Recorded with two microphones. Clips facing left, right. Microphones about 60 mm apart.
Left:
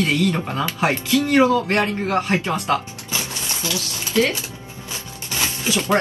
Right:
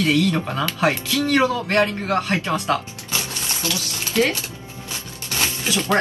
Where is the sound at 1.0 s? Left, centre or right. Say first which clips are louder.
Left 3 dB; left.